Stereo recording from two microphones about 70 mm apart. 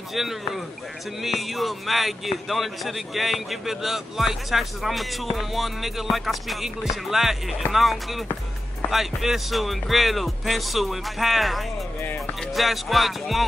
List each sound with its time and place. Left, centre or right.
0.1 s a man's voice: centre
12.0 s music: left
12.5 s a man's voice: centre